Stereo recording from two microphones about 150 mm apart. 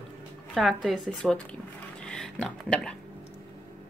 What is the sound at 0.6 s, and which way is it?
Speech, centre (ahead or behind).